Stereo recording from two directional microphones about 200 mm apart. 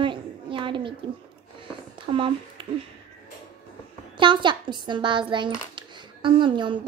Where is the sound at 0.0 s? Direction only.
25° right (ahead or behind).